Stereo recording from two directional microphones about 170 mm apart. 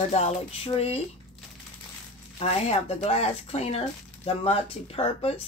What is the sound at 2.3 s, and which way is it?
Speech, 35° left (ahead or behind).